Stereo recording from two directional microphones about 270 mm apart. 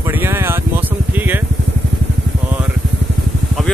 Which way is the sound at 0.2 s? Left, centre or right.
Centre.